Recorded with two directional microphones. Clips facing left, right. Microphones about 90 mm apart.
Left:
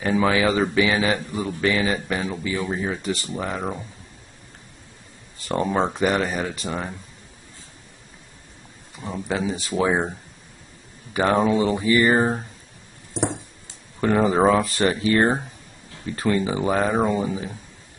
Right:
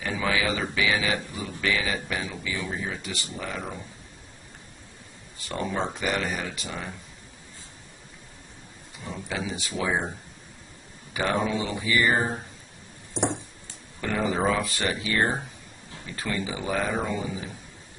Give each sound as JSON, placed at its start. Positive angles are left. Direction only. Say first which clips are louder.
{"t": 0.0, "sound": "speech", "louder": "left 7 dB", "side_deg": 35}
{"t": 5.5, "sound": "speech", "louder": "left 7 dB", "side_deg": 40}
{"t": 9.0, "sound": "speech", "louder": "left 7 dB", "side_deg": 35}
{"t": 11.1, "sound": "speech", "louder": "left 7 dB", "side_deg": 40}
{"t": 14.0, "sound": "speech", "louder": "left 8 dB", "side_deg": 35}